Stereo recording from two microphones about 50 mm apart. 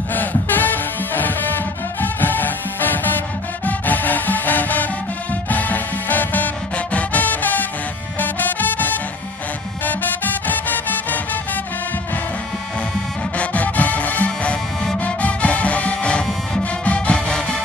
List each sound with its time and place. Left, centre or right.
0.1 s music: left
13.4 s music: left